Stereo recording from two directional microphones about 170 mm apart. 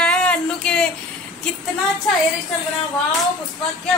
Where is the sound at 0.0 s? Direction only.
5° left (ahead or behind).